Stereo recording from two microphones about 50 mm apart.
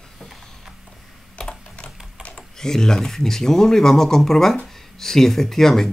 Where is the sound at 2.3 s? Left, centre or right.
Centre.